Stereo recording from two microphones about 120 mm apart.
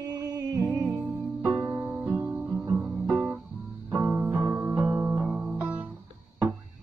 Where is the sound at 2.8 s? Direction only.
5° right (ahead or behind).